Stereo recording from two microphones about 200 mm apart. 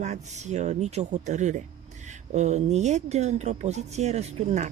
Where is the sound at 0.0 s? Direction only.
35° right (ahead or behind).